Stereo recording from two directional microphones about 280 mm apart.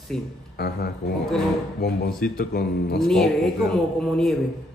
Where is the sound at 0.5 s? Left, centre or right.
Left.